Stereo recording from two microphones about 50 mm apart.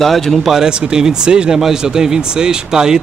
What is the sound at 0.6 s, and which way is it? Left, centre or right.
Speech, centre.